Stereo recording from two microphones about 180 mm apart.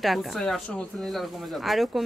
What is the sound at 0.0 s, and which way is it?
Speech, centre (ahead or behind).